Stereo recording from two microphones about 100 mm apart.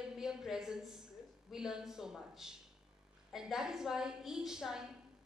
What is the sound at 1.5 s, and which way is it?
A woman's voice, 5° right (ahead or behind).